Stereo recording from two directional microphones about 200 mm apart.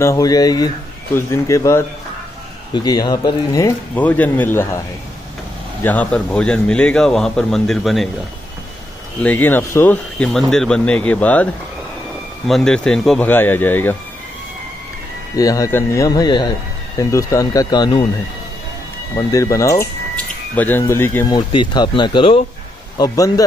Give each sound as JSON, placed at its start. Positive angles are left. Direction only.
{"t": 0.0, "sound": "a man's voice", "side_deg": 15}
{"t": 9.2, "sound": "speech", "side_deg": 10}
{"t": 12.4, "sound": "speech", "side_deg": 0}
{"t": 15.3, "sound": "speech", "side_deg": 15}
{"t": 19.3, "sound": "speech", "side_deg": 15}
{"t": 21.4, "sound": "speech", "side_deg": 25}